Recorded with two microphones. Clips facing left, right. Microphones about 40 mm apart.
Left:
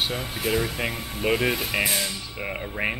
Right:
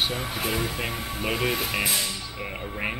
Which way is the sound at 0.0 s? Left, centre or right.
Centre.